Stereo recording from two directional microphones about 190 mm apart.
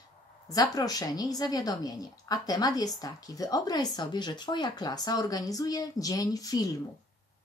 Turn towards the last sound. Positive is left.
turn(degrees=20)  # may be behind; listen again after turning